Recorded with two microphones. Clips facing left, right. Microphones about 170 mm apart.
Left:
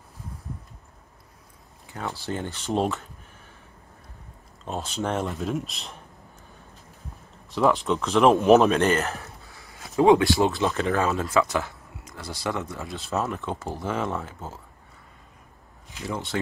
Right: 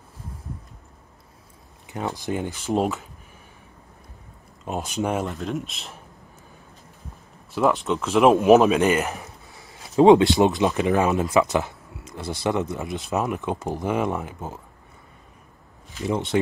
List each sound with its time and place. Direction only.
1.9 s speech: 20° right (ahead or behind)
4.6 s speech: 15° right (ahead or behind)
5.2 s speech: centre (ahead or behind)
7.5 s speech: centre (ahead or behind)
8.8 s speech: 15° right (ahead or behind)
16.0 s speech: 20° right (ahead or behind)